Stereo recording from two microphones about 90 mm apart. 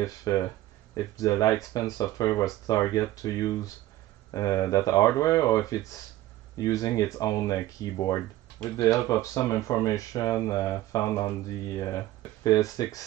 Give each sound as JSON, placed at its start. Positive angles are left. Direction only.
{"t": 0.0, "sound": "speech", "side_deg": 40}